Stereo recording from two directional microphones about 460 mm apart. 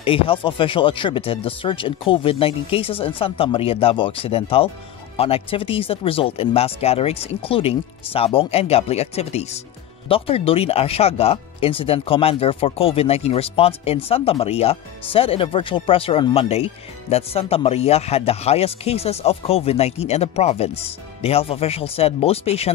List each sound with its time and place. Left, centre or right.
0.0 s speech: centre